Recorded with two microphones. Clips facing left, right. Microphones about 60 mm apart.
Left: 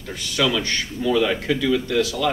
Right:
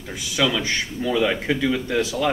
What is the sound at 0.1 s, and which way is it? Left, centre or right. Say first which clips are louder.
A man's voice: left 1 dB; centre.